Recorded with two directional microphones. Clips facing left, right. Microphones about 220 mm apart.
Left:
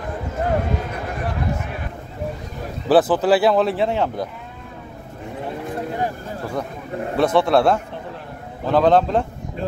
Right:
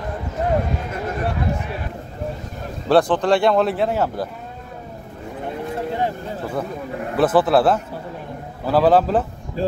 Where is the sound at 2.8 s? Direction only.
5° left (ahead or behind).